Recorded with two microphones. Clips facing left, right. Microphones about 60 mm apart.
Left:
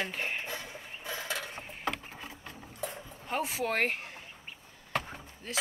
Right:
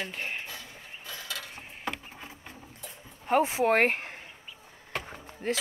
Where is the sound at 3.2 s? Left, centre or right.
Right.